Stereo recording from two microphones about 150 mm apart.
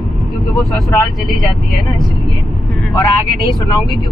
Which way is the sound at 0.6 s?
20° left (ahead or behind).